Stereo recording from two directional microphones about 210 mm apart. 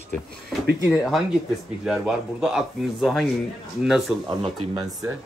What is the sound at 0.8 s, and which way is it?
Speech, centre (ahead or behind).